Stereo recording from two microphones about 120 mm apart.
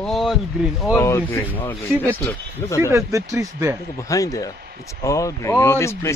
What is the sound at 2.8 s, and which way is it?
Speech, 25° right (ahead or behind).